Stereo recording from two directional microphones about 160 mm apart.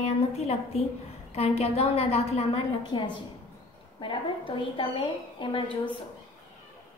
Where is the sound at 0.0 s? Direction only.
40° left (ahead or behind).